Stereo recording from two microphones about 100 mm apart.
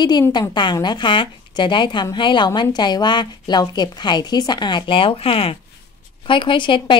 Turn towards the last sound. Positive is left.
turn(degrees=55)  # may be behind; listen again after turning